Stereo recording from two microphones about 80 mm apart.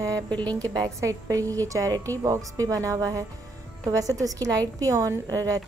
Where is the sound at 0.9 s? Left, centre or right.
Right.